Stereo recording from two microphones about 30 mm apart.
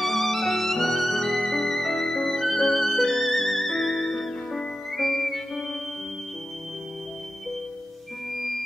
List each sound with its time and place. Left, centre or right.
0.0 s violin: centre
2.4 s music: centre
3.9 s music: left
4.9 s music: centre
8.4 s music: centre